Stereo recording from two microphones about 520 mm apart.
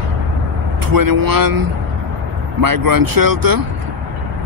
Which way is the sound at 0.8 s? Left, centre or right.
Right.